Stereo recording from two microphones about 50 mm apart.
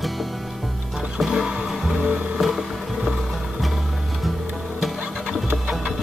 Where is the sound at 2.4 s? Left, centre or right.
Centre.